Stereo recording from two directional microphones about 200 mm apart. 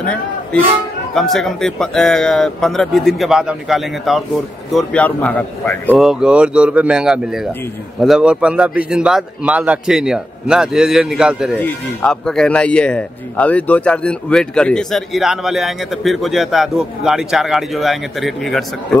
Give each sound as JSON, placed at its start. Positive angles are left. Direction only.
{"t": 0.0, "sound": "a man's voice", "side_deg": 5}